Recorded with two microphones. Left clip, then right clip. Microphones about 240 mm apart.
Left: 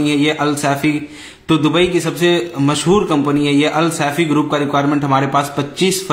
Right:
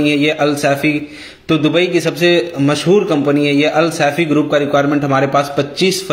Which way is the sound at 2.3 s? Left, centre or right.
Left.